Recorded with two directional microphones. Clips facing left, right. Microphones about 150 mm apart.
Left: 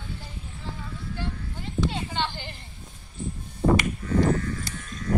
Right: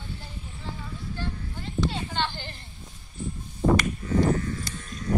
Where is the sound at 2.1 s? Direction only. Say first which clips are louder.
Even; 10° left (ahead or behind).